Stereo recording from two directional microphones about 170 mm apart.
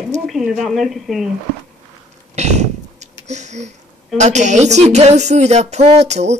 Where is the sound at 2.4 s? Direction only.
40° right (ahead or behind).